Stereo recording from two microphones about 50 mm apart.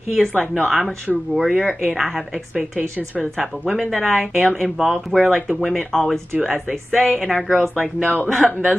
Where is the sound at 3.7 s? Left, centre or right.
Centre.